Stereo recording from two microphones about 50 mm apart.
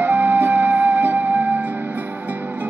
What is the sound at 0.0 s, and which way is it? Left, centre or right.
Music, right.